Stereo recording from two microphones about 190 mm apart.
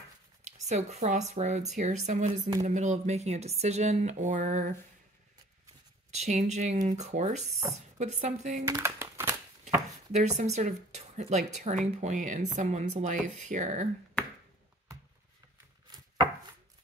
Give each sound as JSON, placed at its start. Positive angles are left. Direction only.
{"t": 0.7, "sound": "speech", "side_deg": -35}
{"t": 6.1, "sound": "speech", "side_deg": -40}
{"t": 8.6, "sound": "a sound", "side_deg": -15}
{"t": 9.7, "sound": "speech", "side_deg": -35}